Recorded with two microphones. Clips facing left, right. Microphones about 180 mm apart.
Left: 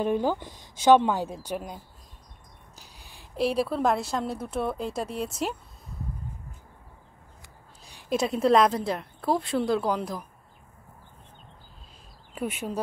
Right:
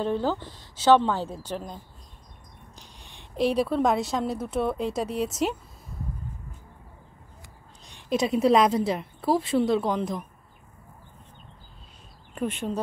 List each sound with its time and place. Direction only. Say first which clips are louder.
0.0 s a woman's voice: left 1 dB; 15° left (ahead or behind)
2.8 s a woman's voice: right 1 dB; 5° left (ahead or behind)
8.1 s a woman's voice: right 1 dB; centre (ahead or behind)
12.4 s a woman's voice: right 2 dB; 5° left (ahead or behind)